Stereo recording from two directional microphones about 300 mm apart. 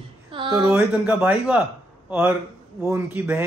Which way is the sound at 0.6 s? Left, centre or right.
Centre.